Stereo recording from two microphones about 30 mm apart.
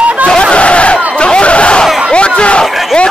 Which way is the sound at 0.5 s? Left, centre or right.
Left.